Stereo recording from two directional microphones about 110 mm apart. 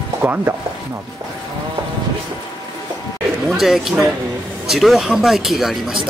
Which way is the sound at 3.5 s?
Centre (ahead or behind).